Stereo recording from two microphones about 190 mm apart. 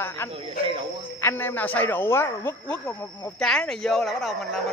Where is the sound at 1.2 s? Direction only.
15° left (ahead or behind).